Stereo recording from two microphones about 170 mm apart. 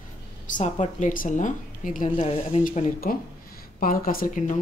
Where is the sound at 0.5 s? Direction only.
45° left (ahead or behind).